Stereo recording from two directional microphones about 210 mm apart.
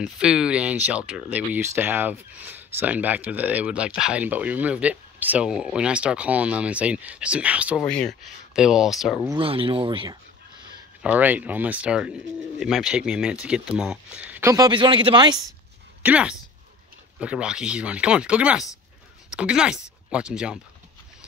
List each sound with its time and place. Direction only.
0.0 s speech: 5° right (ahead or behind)
9.4 s speech: 25° right (ahead or behind)
11.0 s speech: 5° right (ahead or behind); by 15.3 s 20° right (ahead or behind)
16.0 s speech: 5° right (ahead or behind)